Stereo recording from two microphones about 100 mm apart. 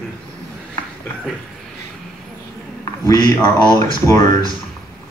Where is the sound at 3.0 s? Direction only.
35° left (ahead or behind).